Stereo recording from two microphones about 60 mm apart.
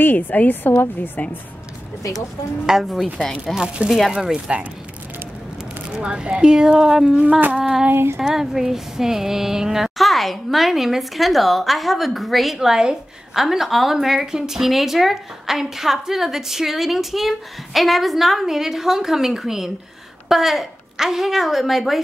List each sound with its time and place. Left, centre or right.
0.0 s a woman's voice: left
2.6 s a sound: centre
3.6 s speech: centre
5.9 s speech: centre
7.2 s speech: right
7.5 s speech: centre
7.9 s child singing: right
8.2 s a sound: centre